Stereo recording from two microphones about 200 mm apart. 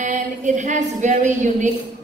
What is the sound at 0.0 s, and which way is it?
A woman's voice, 40° right (ahead or behind).